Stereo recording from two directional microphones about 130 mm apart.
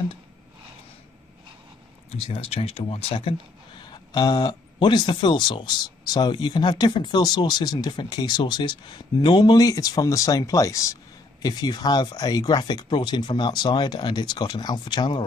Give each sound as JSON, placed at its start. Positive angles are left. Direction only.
{"t": 2.1, "sound": "speech", "side_deg": 50}
{"t": 3.9, "sound": "speech", "side_deg": 35}